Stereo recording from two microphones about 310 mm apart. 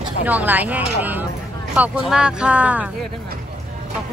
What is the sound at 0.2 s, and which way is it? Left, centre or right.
Speech, centre.